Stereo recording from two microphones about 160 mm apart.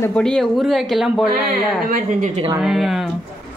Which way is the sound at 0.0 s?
5° left (ahead or behind).